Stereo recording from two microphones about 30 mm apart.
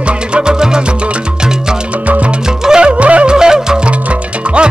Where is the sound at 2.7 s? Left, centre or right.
Right.